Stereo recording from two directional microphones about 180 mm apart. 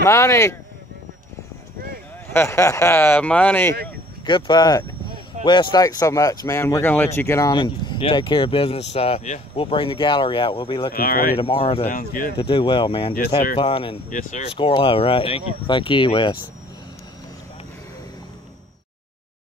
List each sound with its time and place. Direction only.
0.0 s speech: 15° left (ahead or behind)
2.3 s speech: 15° left (ahead or behind)
4.3 s speech: 25° left (ahead or behind)
10.9 s speech: 55° left (ahead or behind)
11.3 s speech: 30° left (ahead or behind)
11.9 s speech: 50° left (ahead or behind)
12.4 s speech: 30° left (ahead or behind)
14.1 s speech: 40° left (ahead or behind)